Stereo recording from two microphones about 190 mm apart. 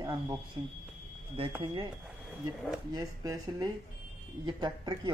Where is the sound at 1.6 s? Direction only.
25° right (ahead or behind).